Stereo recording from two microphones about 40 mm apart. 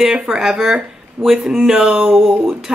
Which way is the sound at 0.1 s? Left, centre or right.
Centre.